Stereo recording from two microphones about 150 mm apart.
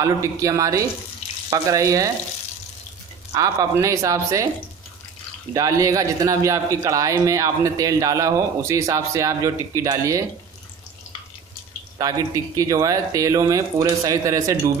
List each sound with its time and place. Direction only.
0.0 s speech: 20° right (ahead or behind)
3.3 s speech: 25° right (ahead or behind)
5.5 s speech: 20° right (ahead or behind)
12.0 s speech: 25° right (ahead or behind)